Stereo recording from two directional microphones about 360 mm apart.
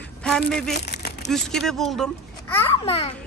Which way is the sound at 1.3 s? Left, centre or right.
Centre.